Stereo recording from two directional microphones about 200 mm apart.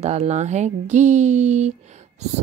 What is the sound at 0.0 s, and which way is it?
A woman's voice, 35° right (ahead or behind).